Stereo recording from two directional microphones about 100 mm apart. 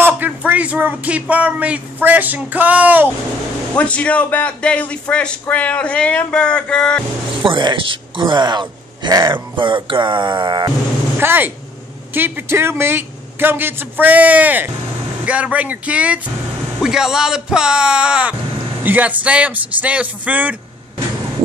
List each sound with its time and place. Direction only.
0.0 s speech: 15° right (ahead or behind)
3.7 s a man's voice: 10° left (ahead or behind)
7.4 s speech: 55° right (ahead or behind)
11.1 s a man's voice: 20° right (ahead or behind)